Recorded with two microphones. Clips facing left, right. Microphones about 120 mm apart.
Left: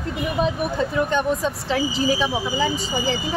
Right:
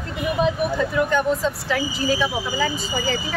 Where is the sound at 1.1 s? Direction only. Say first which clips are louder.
Right 1 dB; 20° left (ahead or behind).